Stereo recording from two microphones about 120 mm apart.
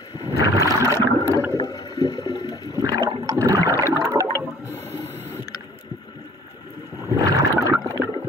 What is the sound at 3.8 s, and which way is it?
Toilet flush, 25° right (ahead or behind).